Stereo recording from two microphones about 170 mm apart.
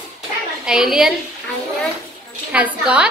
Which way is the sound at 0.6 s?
5° right (ahead or behind).